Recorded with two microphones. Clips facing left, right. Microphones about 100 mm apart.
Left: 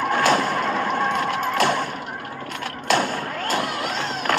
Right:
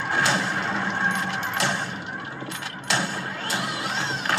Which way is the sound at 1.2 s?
50° left (ahead or behind).